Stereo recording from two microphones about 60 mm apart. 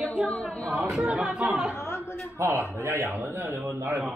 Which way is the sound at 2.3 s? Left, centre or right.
Right.